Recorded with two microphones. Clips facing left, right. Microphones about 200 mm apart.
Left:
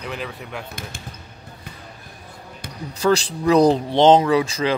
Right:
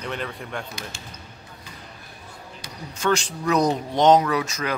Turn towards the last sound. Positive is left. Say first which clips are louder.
# left 6 dB
turn(degrees=30)  # may be behind; listen again after turning